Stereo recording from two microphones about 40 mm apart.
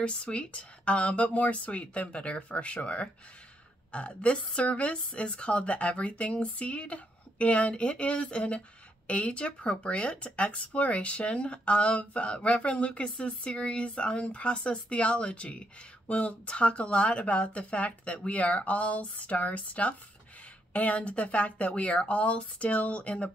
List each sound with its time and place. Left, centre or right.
0.0 s speech: left